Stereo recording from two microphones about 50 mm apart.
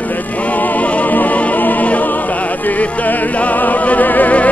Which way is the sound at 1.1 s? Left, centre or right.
Left.